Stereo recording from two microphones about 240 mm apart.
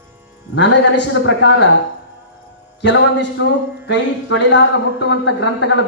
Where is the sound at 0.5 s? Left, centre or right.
Left.